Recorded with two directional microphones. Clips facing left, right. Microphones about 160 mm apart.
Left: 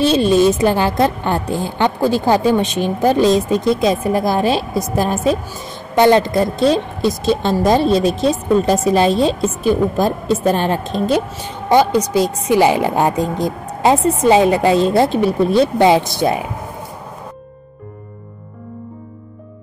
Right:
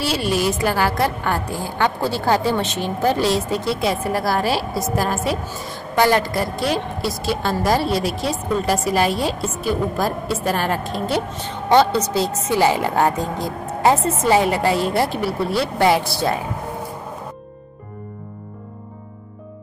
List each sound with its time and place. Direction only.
0.0 s a woman's voice: 20° left (ahead or behind)